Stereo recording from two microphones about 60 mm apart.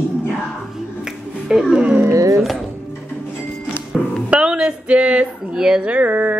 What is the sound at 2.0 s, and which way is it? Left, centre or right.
Speech, right.